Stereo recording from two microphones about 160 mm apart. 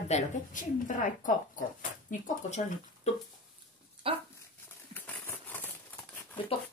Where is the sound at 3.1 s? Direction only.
45° left (ahead or behind).